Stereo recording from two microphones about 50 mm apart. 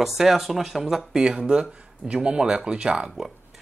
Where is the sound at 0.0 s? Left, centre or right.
Centre.